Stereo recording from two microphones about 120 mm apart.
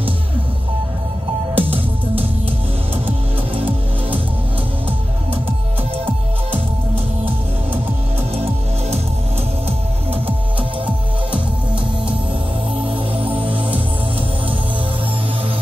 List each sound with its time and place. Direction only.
1.5 s music: 50° right (ahead or behind)
12.9 s music: 50° right (ahead or behind)